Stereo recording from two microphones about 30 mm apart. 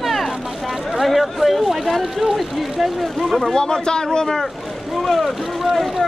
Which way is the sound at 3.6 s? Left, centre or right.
Left.